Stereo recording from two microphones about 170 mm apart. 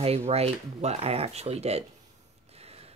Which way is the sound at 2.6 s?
35° right (ahead or behind).